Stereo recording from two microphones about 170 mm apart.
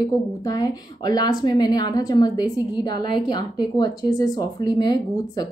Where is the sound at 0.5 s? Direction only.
20° left (ahead or behind).